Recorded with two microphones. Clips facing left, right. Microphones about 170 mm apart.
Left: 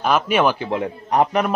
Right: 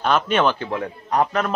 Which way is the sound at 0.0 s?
10° left (ahead or behind).